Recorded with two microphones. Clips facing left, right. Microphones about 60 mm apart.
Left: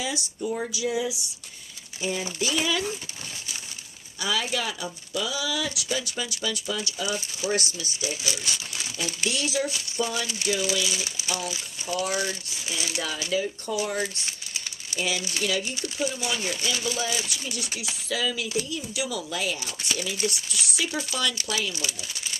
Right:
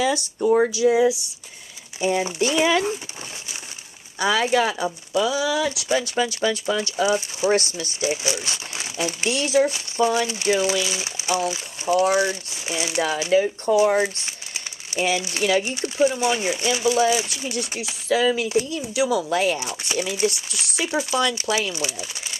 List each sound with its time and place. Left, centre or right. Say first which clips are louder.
0.0 s speech: right 9 dB; right
0.7 s speech: right 10 dB; right
4.2 s speech: right 8 dB; right
19.6 s speech: right 5 dB; right
20.6 s speech: right 6 dB; right